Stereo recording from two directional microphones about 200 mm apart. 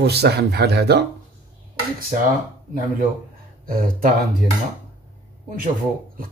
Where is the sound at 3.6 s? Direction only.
45° right (ahead or behind).